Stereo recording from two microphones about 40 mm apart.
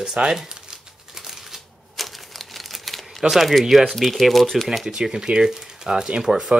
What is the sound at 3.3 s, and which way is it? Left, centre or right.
Speech, centre.